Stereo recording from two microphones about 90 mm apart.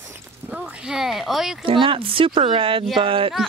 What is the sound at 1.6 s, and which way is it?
Speech, 75° right (ahead or behind).